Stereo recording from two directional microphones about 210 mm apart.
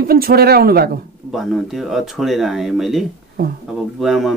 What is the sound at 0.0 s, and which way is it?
Speech, 45° right (ahead or behind).